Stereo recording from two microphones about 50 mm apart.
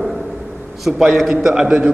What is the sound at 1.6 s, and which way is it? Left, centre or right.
Speech, right.